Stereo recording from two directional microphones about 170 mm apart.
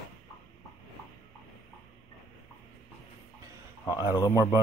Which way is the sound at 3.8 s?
20° left (ahead or behind).